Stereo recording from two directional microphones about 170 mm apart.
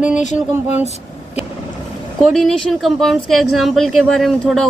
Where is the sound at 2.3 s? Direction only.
Centre (ahead or behind).